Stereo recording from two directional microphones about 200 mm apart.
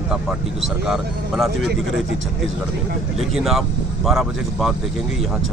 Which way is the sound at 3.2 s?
Centre (ahead or behind).